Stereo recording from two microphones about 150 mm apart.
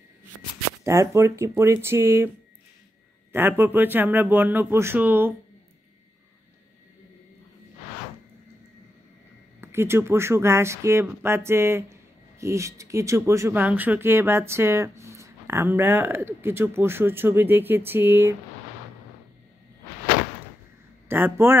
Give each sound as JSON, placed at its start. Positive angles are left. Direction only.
{"t": 0.8, "sound": "speech", "side_deg": -20}
{"t": 9.6, "sound": "speech", "side_deg": -15}
{"t": 21.1, "sound": "speech", "side_deg": -15}